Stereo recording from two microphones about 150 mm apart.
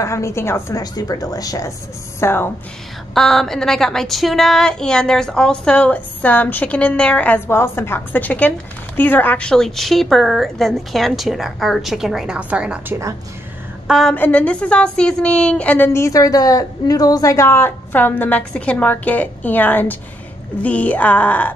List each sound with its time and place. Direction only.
0.0 s a woman's voice: 20° left (ahead or behind)
3.2 s a woman's voice: centre (ahead or behind)
14.1 s a woman's voice: 10° left (ahead or behind)